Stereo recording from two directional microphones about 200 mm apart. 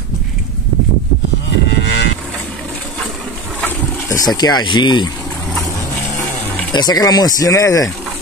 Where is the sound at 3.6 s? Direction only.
15° left (ahead or behind).